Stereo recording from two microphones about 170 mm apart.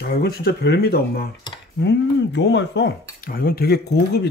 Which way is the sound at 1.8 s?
85° left.